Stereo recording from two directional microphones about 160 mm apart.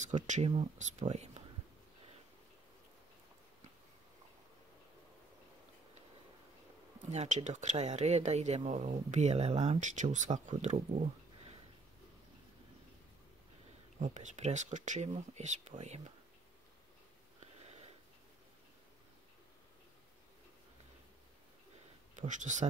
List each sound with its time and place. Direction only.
0.0 s speech: 50° right (ahead or behind)
7.1 s speech: 45° right (ahead or behind)
13.9 s speech: 50° right (ahead or behind)
17.4 s a sound: 40° right (ahead or behind)
22.1 s speech: 50° right (ahead or behind)